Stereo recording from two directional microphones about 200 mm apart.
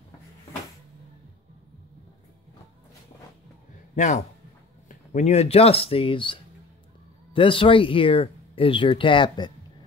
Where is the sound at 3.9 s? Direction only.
35° left (ahead or behind).